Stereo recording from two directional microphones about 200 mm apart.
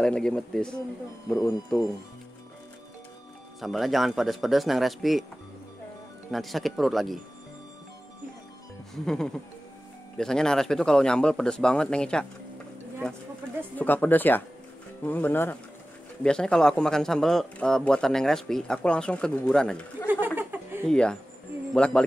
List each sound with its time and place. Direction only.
0.0 s speech: 5° left (ahead or behind)
1.3 s speech: 15° left (ahead or behind)
3.6 s speech: centre (ahead or behind)
6.3 s speech: centre (ahead or behind)
9.0 s speech: 5° left (ahead or behind)
20.3 s a sound: 10° right (ahead or behind)
20.9 s speech: 5° left (ahead or behind)